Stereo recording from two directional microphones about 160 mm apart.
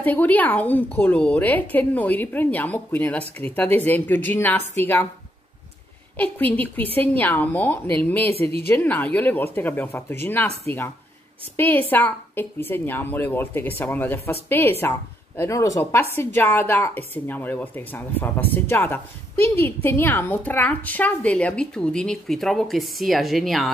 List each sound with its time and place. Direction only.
0.0 s a woman's voice: 10° left (ahead or behind)
6.1 s a woman's voice: 10° left (ahead or behind)
8.3 s a woman's voice: 35° right (ahead or behind)
8.6 s a woman's voice: 10° left (ahead or behind)
11.5 s a woman's voice: 10° left (ahead or behind)